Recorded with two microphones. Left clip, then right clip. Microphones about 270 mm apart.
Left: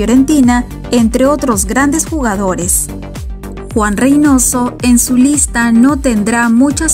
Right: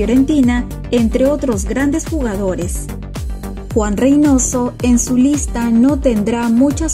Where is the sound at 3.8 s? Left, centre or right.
Centre.